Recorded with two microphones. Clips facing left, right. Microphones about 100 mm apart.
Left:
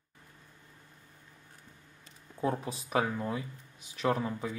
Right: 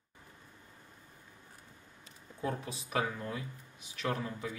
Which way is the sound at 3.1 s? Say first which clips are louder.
Left 5 dB; 15° left (ahead or behind).